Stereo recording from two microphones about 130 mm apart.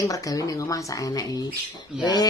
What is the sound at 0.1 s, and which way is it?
A man's voice, 25° left (ahead or behind).